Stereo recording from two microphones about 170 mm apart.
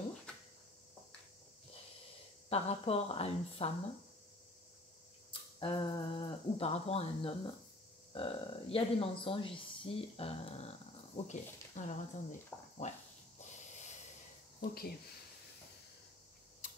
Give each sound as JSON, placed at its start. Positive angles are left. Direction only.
{"t": 2.5, "sound": "speech", "side_deg": 35}
{"t": 5.6, "sound": "speech", "side_deg": 30}
{"t": 14.6, "sound": "speech", "side_deg": 65}